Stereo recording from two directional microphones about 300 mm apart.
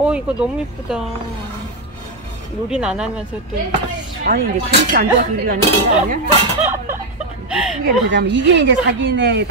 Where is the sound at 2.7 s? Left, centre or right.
Centre.